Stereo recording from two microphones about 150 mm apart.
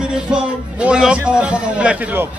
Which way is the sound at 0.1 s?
5° right (ahead or behind).